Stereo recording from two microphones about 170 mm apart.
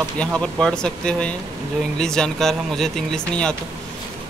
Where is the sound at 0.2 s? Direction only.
5° left (ahead or behind).